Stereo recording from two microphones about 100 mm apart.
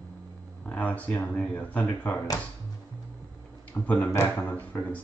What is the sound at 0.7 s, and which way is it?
Speech, 15° left (ahead or behind).